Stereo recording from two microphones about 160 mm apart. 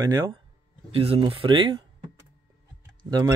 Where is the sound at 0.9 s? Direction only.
35° right (ahead or behind).